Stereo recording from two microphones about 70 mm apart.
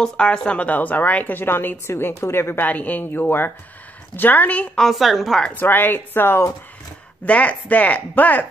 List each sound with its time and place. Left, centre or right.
0.0 s a woman's voice: centre; by 2.6 s left
2.6 s a woman's voice: left
4.7 s a woman's voice: centre
5.5 s a woman's voice: left
7.2 s a woman's voice: left